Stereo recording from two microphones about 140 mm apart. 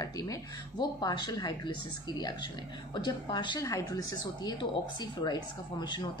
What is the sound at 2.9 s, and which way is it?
A woman's voice, 35° left (ahead or behind).